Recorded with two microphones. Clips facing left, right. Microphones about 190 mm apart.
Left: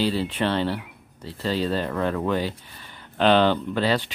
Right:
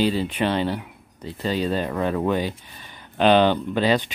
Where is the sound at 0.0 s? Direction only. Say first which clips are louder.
Right 2 dB; 15° right (ahead or behind).